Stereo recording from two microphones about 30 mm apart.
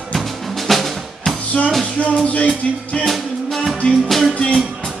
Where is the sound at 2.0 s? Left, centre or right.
Left.